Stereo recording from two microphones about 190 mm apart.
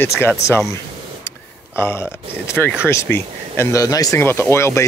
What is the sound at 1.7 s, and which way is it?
Speech, 15° left (ahead or behind).